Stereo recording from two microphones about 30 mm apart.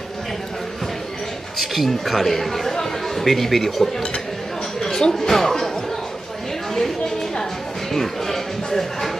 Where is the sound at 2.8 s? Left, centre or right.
Centre.